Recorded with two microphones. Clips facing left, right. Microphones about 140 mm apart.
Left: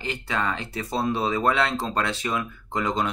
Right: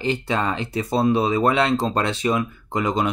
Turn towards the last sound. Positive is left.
turn(degrees=-15)  # may be behind; listen again after turning